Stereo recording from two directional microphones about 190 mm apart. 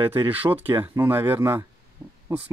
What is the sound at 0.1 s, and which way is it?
Speech, 10° right (ahead or behind).